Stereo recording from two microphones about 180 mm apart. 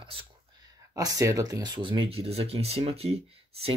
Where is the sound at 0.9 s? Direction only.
20° right (ahead or behind).